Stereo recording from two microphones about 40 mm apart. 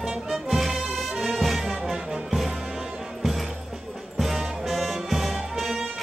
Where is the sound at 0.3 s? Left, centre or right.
Centre.